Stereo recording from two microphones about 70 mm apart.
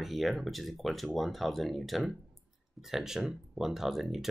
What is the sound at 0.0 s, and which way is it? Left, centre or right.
Speech, centre.